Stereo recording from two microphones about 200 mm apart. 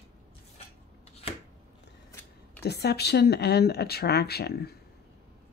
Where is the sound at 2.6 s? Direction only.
55° left (ahead or behind).